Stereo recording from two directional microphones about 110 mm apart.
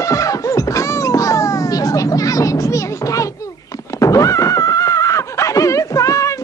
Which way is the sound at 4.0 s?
30° left (ahead or behind).